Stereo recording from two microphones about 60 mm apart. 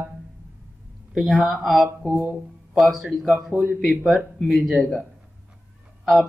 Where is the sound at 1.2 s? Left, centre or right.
Centre.